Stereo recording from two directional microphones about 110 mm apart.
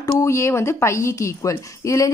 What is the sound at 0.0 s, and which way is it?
A woman's voice, 25° left (ahead or behind).